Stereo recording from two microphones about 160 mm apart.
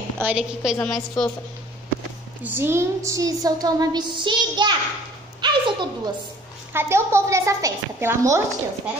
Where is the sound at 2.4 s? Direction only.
15° right (ahead or behind).